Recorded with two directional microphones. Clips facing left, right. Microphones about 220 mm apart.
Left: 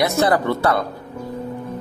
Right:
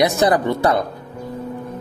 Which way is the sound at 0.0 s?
15° right (ahead or behind).